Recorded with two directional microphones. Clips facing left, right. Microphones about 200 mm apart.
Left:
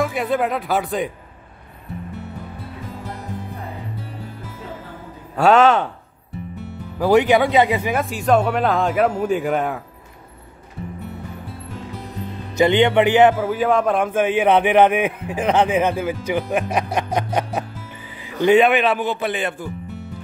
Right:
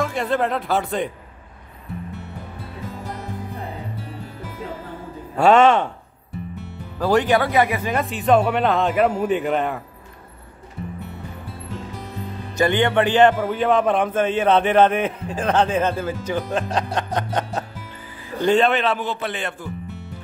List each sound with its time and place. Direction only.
0.0 s a man's voice: 10° left (ahead or behind)
5.4 s a man's voice: 5° left (ahead or behind)
7.0 s a man's voice: 10° left (ahead or behind)
7.9 s speech: centre (ahead or behind)
12.5 s a man's voice: 20° left (ahead or behind)